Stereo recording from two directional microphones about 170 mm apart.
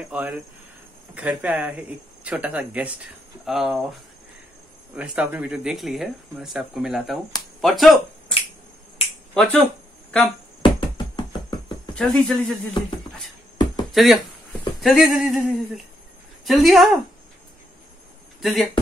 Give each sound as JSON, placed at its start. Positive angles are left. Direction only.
{"t": 0.1, "sound": "speech", "side_deg": -5}
{"t": 4.9, "sound": "speech", "side_deg": -5}
{"t": 10.6, "sound": "music", "side_deg": 30}
{"t": 11.9, "sound": "speech", "side_deg": 5}
{"t": 13.9, "sound": "speech", "side_deg": 0}
{"t": 18.4, "sound": "speech", "side_deg": 0}